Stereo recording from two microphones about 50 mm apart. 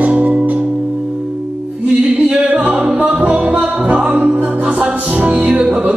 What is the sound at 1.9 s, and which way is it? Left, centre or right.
Music, right.